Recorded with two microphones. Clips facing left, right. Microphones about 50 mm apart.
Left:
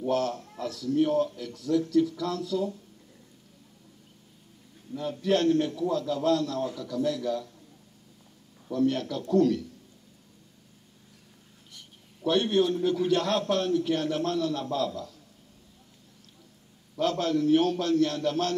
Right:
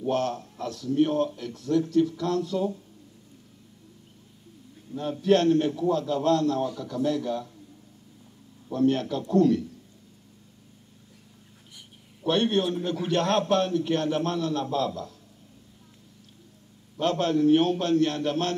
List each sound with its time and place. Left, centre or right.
0.0 s a man's voice: right
4.9 s a man's voice: right
8.7 s a man's voice: right
12.2 s a man's voice: right
17.0 s a man's voice: right